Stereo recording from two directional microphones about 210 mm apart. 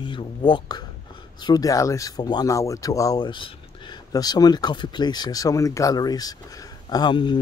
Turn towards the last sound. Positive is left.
turn(degrees=20)  # may be behind; listen again after turning